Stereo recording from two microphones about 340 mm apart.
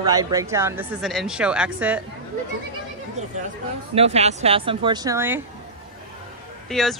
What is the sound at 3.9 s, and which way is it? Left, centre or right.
Speech, centre.